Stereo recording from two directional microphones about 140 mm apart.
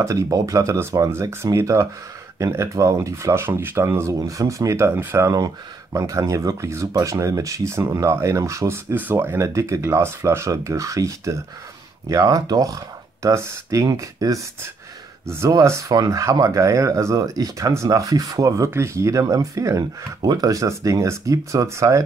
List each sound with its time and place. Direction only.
0.0 s speech: 25° right (ahead or behind)